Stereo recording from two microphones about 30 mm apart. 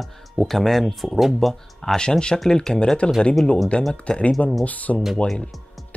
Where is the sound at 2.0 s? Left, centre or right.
Left.